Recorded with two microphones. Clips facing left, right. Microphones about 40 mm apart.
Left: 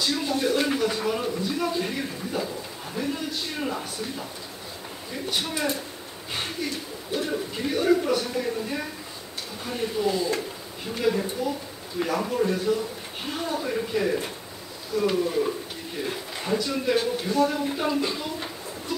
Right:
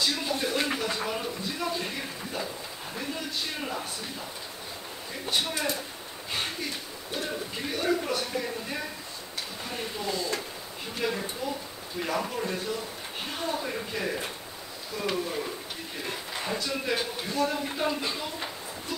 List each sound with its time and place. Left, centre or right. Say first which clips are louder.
0.0 s a sound: left 3 dB; centre
3.6 s speech: left 4 dB; centre
7.2 s speech: left 5 dB; centre
9.7 s speech: left 8 dB; centre